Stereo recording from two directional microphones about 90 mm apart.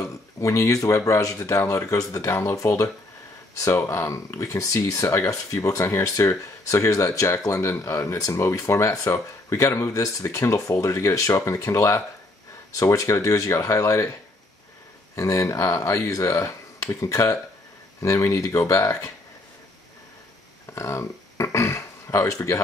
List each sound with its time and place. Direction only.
0.4 s speech: 35° left (ahead or behind)
15.1 s speech: 35° left (ahead or behind)
20.7 s a sound: 35° left (ahead or behind)